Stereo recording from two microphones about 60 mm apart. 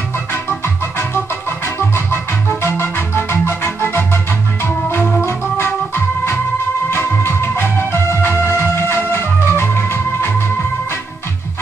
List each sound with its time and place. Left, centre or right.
2.6 s music: left
5.2 s organ: left
6.9 s music: left